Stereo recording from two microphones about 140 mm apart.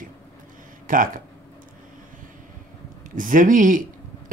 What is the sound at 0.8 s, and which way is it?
Speech, 75° right (ahead or behind).